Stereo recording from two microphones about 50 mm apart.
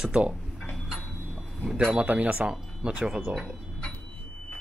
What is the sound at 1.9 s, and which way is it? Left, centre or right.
Speech, right.